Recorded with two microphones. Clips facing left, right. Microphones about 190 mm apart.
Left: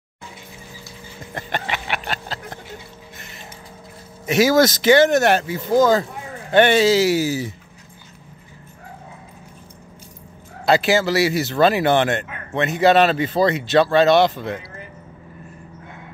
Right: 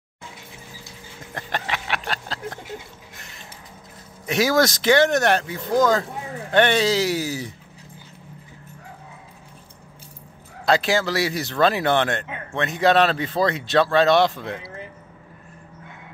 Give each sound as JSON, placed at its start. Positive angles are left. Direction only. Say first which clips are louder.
{"t": 1.3, "sound": "a sound", "louder": "left 2 dB", "side_deg": 0}
{"t": 4.3, "sound": "speech", "louder": "left 4 dB", "side_deg": 0}
{"t": 10.6, "sound": "speech", "louder": "left 3 dB", "side_deg": 5}